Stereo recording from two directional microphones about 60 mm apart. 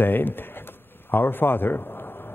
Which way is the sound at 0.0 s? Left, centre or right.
Left.